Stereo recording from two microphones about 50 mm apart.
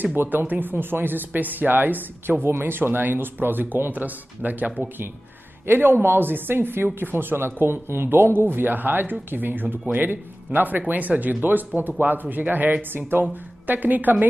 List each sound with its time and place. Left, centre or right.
0.0 s a woman's voice: right